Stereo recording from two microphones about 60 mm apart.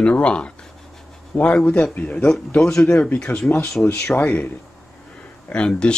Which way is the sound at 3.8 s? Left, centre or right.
Left.